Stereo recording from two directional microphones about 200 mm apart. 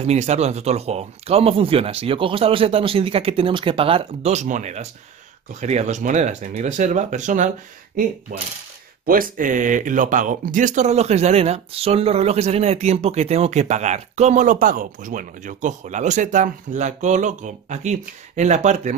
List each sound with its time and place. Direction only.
0.0 s speech: 35° right (ahead or behind)